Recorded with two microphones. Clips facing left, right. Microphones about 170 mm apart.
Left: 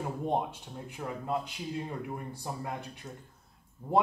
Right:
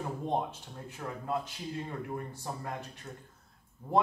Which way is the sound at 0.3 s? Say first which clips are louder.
Left 1 dB; 15° left (ahead or behind).